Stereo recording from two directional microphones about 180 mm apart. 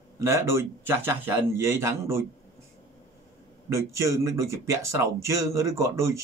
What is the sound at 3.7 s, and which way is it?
A man's voice, 15° right (ahead or behind).